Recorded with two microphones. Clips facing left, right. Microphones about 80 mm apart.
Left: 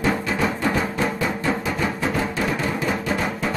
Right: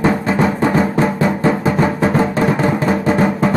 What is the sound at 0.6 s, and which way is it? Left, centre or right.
Music, right.